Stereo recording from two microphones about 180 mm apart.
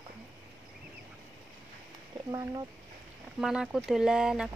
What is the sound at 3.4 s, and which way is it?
Speech, 5° right (ahead or behind).